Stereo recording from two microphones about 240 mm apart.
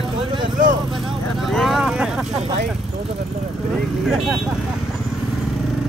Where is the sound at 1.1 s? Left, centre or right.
Centre.